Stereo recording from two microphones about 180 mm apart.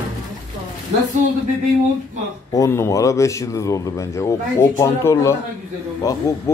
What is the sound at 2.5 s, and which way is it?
Speech, 15° left (ahead or behind).